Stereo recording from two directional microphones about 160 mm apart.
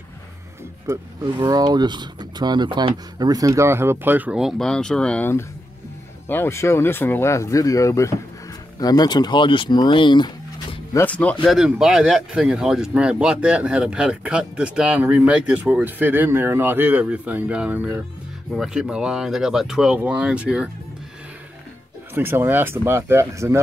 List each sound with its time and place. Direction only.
0.8 s speech: 25° right (ahead or behind); by 11.1 s 25° left (ahead or behind)
11.1 s speech: 10° left (ahead or behind)
11.4 s speech: centre (ahead or behind)
22.1 s speech: 15° right (ahead or behind)